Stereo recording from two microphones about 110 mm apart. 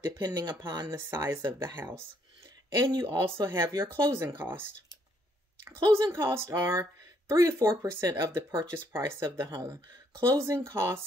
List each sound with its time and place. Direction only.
0.0 s speech: 35° right (ahead or behind)
0.9 s speech: 25° right (ahead or behind)